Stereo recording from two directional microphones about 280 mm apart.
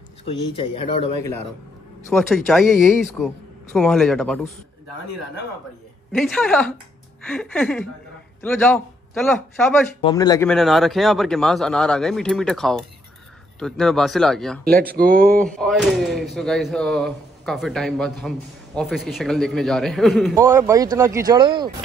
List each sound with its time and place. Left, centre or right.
0.2 s a man's voice: centre
2.1 s speech: centre
6.1 s speech: centre
10.0 s speech: centre
10.5 s speech: centre
14.6 s speech: right
15.3 s speech: centre
20.3 s speech: centre